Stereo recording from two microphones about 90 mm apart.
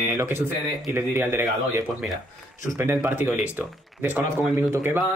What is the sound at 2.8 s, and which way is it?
Speech, 20° right (ahead or behind).